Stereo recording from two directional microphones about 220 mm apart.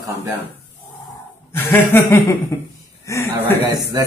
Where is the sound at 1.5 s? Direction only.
10° left (ahead or behind).